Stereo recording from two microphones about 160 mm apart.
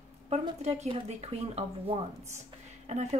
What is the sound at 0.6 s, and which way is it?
Speech, 40° right (ahead or behind).